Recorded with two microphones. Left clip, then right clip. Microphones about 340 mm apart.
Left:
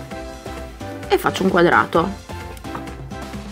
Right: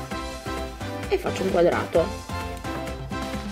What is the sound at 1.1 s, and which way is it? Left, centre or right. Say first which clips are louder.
Speech: left 7 dB; centre.